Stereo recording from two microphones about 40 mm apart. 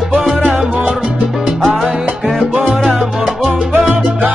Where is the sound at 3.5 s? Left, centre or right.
Right.